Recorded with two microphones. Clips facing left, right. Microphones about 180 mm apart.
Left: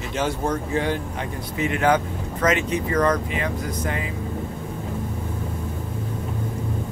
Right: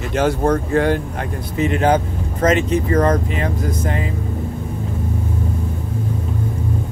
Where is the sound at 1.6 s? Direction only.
35° right (ahead or behind).